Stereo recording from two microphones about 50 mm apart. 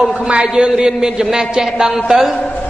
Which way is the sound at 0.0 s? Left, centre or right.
Centre.